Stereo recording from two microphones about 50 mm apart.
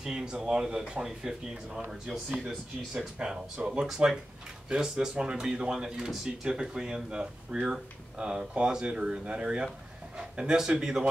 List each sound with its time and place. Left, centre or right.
0.0 s speech: centre
3.2 s speech: centre